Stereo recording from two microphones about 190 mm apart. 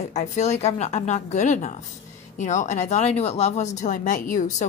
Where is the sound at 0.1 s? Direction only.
35° left (ahead or behind).